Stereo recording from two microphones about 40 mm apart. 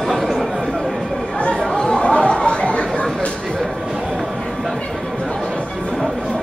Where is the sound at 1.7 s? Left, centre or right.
Centre.